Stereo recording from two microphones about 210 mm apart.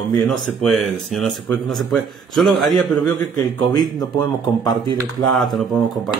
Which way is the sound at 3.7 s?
20° left (ahead or behind).